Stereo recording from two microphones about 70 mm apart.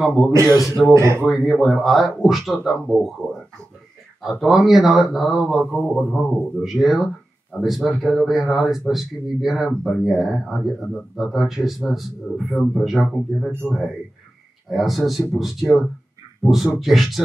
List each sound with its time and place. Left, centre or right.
0.0 s a man's voice: centre
0.3 s speech: right
0.8 s a man's voice: centre
6.6 s a man's voice: centre
14.7 s a man's voice: centre